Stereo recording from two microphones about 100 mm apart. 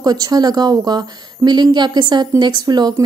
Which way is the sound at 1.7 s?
50° right (ahead or behind).